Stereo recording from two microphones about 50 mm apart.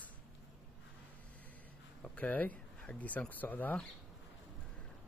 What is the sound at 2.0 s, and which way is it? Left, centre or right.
Speech, left.